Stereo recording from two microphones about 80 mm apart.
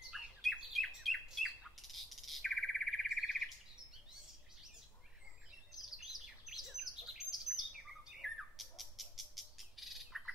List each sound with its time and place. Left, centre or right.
0.4 s bird: centre
5.7 s chirp: centre
7.4 s bird: centre